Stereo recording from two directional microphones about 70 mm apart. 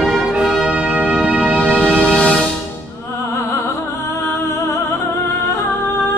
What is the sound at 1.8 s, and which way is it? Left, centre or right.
Music, centre.